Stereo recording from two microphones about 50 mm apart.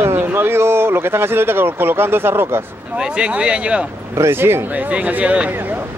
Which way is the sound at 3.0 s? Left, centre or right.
Centre.